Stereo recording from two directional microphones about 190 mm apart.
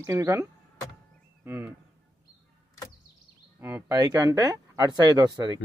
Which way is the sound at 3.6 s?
10° right (ahead or behind).